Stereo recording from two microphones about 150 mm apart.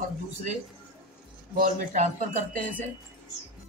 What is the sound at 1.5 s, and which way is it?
A man's voice, 60° right (ahead or behind).